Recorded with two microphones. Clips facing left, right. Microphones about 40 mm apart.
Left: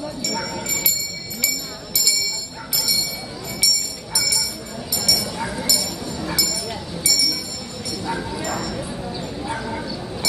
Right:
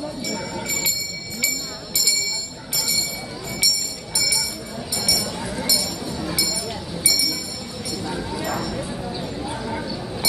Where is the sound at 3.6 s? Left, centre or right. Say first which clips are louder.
Even; right.